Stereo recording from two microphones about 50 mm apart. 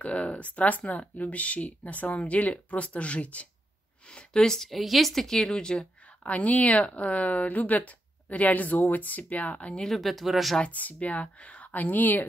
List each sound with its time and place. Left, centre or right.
0.0 s speech: left
4.1 s a woman's voice: centre
6.2 s speech: left
9.8 s speech: centre
10.6 s speech: left